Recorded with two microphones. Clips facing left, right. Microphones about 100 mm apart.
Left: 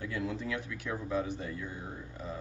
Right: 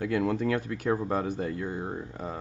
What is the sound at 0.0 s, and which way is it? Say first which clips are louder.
Speech: right 9 dB; 65° right (ahead or behind).